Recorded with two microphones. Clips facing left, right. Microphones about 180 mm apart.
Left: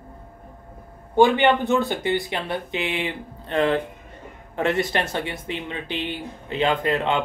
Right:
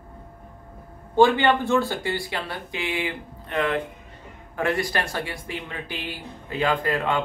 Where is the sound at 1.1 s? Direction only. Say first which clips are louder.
Left 1 dB; 15° left (ahead or behind).